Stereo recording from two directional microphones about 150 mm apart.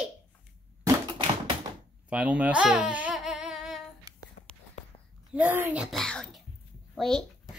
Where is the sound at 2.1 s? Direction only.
10° right (ahead or behind).